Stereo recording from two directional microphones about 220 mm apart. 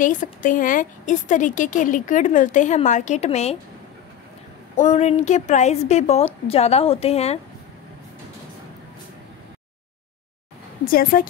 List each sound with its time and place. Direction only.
0.0 s a woman's voice: 35° left (ahead or behind)
4.7 s a woman's voice: 30° left (ahead or behind)
10.9 s a woman's voice: 40° left (ahead or behind)